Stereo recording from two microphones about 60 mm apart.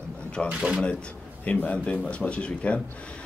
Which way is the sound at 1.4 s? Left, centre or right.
Left.